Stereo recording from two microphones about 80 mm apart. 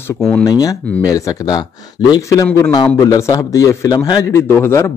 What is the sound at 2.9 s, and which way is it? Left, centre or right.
A man's voice, left.